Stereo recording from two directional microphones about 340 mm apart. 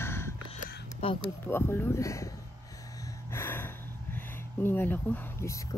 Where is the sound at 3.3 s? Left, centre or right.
Centre.